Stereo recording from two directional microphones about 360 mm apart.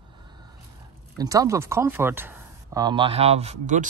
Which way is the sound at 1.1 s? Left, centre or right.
Centre.